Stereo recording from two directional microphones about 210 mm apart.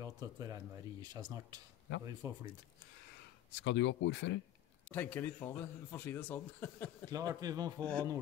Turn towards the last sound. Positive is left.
turn(degrees=-20)  # may be behind; listen again after turning